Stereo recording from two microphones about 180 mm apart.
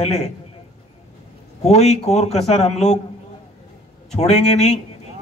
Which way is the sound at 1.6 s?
35° left (ahead or behind).